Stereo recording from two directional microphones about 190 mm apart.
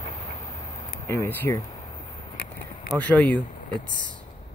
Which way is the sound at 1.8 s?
25° left (ahead or behind).